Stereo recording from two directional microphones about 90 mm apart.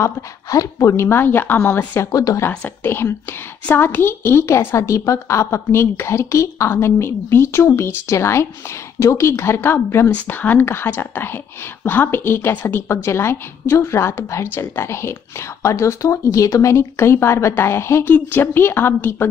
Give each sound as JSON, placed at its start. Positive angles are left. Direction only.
{"t": 0.0, "sound": "a woman's voice", "side_deg": 40}
{"t": 2.0, "sound": "a woman's voice", "side_deg": 40}
{"t": 2.8, "sound": "a woman's voice", "side_deg": 25}